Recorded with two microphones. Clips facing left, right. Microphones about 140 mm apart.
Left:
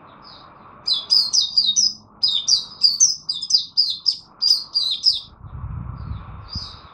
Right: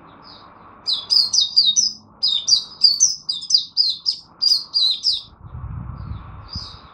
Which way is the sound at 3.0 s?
25° right (ahead or behind).